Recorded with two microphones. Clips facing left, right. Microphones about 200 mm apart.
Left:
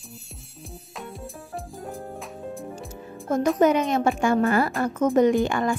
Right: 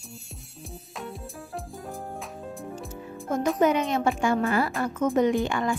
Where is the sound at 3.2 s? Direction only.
45° left (ahead or behind).